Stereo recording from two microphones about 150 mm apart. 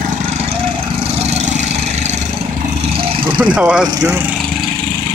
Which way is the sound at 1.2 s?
45° right (ahead or behind).